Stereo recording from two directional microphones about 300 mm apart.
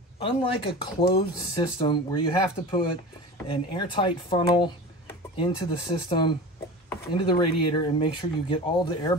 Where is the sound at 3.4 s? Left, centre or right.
Centre.